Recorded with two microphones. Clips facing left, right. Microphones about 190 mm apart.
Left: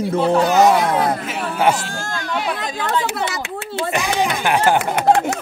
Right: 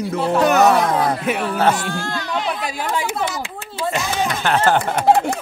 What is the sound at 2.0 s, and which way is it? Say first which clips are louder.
Chatter: right 1 dB; 50° left (ahead or behind).